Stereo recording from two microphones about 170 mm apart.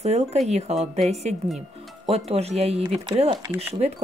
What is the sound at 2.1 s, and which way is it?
Speech, 40° right (ahead or behind).